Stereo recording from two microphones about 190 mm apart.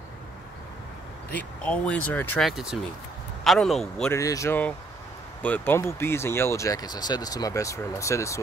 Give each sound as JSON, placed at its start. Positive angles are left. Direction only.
{"t": 1.3, "sound": "speech", "side_deg": 5}
{"t": 4.1, "sound": "speech", "side_deg": 15}